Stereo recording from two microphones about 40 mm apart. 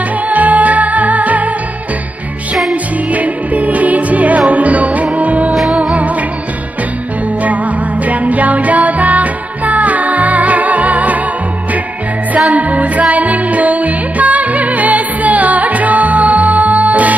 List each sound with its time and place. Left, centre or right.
0.3 s music: right
2.7 s music: right
8.0 s music: right
12.4 s music: right